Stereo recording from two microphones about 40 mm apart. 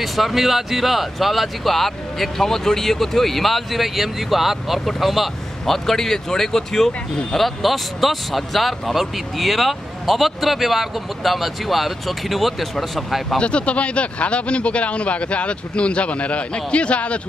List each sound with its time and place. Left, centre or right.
0.0 s speech: centre
13.4 s speech: left